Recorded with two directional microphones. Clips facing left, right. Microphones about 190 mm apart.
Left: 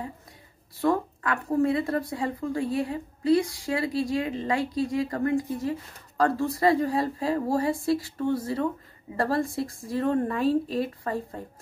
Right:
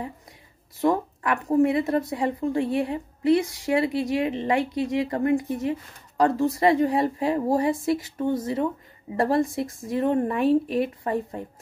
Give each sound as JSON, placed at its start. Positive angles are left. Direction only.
{"t": 0.7, "sound": "speech", "side_deg": -20}